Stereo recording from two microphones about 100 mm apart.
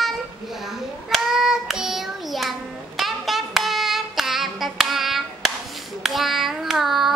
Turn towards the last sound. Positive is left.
turn(degrees=0)  # may be behind; listen again after turning